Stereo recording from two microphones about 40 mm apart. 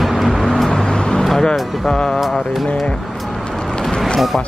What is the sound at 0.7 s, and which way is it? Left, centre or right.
Vehicle, centre.